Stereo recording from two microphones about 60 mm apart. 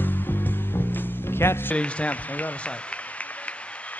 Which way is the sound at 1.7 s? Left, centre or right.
Left.